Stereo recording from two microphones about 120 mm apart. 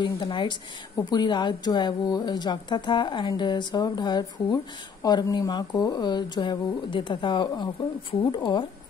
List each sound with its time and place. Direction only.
0.0 s speech: 40° left (ahead or behind)